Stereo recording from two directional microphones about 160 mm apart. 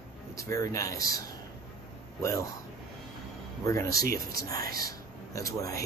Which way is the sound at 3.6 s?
20° left (ahead or behind).